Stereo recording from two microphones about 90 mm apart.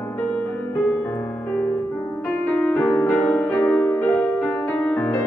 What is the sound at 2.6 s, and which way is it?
Music, 15° left (ahead or behind).